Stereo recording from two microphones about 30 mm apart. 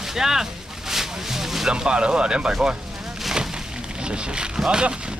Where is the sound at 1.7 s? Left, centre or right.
Right.